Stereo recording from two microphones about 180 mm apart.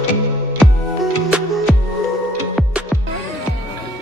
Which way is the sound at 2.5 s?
5° right (ahead or behind).